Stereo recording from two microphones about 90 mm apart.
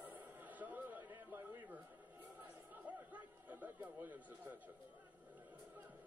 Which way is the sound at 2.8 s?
20° right (ahead or behind).